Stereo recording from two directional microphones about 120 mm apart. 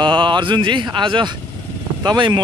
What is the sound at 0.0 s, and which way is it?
Speech, 40° right (ahead or behind).